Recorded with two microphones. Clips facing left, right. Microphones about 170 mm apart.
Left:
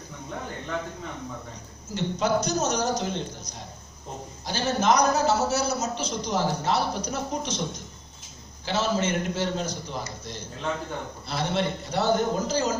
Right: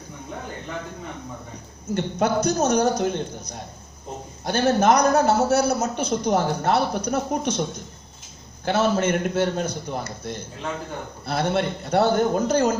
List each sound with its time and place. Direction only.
1.9 s a man's voice: 55° right (ahead or behind)
8.6 s a man's voice: 55° right (ahead or behind)